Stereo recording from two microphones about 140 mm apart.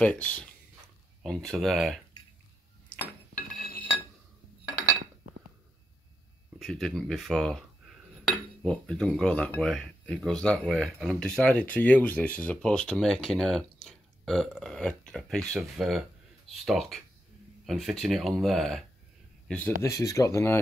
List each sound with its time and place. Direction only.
0.0 s speech: 10° left (ahead or behind)
6.6 s speech: 5° left (ahead or behind)
19.8 s speech: 20° left (ahead or behind)